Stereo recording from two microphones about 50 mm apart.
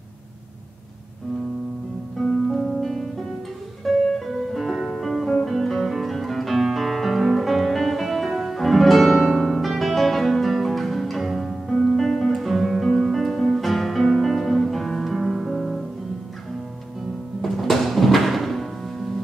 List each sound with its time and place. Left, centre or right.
2.5 s music: centre
5.0 s guitar: centre
9.1 s music: centre
17.4 s music: centre